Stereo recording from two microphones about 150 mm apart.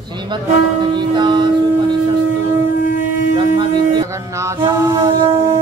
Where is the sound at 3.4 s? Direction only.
30° right (ahead or behind).